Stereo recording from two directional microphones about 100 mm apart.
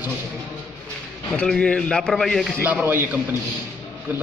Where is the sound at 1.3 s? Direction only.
10° left (ahead or behind).